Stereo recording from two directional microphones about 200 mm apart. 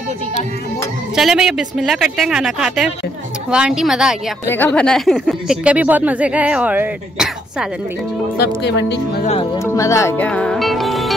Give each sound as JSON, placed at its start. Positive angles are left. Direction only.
{"t": 1.1, "sound": "speech", "side_deg": -5}
{"t": 4.5, "sound": "speech", "side_deg": 10}
{"t": 8.4, "sound": "speech", "side_deg": 55}
{"t": 9.2, "sound": "speech", "side_deg": 30}
{"t": 9.7, "sound": "speech", "side_deg": 15}